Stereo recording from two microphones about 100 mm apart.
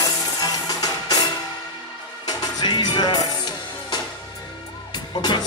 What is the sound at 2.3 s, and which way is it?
Music, 45° left (ahead or behind).